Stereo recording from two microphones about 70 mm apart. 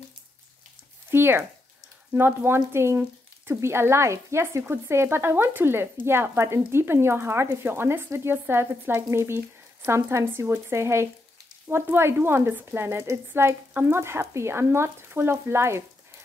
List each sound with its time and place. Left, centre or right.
1.1 s speech: right